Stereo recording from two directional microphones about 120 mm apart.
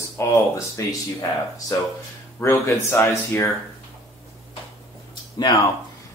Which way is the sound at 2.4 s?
20° left (ahead or behind).